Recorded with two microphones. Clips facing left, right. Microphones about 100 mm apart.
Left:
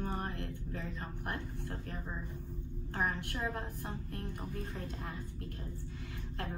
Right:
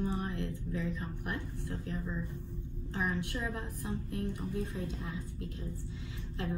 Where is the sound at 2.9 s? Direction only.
50° left (ahead or behind).